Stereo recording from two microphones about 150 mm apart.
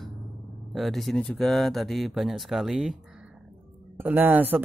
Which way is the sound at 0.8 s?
Centre (ahead or behind).